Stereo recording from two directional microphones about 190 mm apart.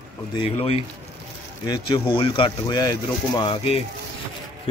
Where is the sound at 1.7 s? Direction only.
25° left (ahead or behind).